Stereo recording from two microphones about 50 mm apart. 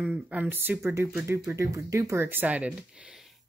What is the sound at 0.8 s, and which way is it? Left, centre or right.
Speech, right.